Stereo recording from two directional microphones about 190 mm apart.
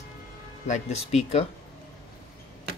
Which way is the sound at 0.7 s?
35° left (ahead or behind).